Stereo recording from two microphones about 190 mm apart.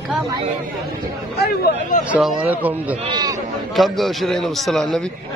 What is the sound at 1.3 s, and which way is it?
Speech, 50° left (ahead or behind).